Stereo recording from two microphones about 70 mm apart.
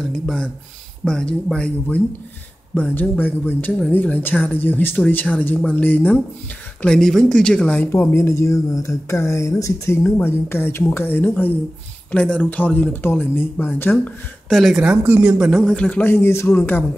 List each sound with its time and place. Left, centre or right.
0.1 s speech: centre
6.8 s speech: centre
7.8 s speech: left
10.0 s speech: left
12.1 s speech: centre
14.5 s speech: centre
14.8 s speech: centre
15.7 s speech: centre
16.0 s speech: left